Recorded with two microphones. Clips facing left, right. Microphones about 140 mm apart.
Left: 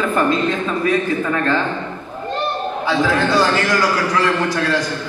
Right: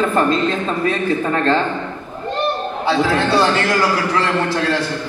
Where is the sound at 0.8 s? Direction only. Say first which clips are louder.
Left 1 dB; 30° right (ahead or behind).